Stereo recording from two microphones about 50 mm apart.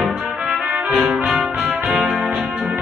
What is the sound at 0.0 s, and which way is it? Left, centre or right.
Brass instrument, centre.